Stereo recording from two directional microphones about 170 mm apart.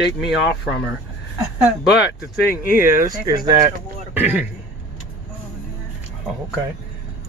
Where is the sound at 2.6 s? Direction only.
55° left (ahead or behind).